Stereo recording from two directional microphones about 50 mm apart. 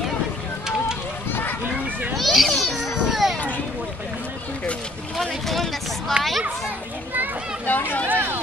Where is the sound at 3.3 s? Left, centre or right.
Left.